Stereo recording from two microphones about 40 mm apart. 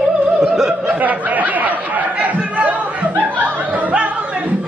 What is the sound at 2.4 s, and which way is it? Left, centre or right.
Crowd, right.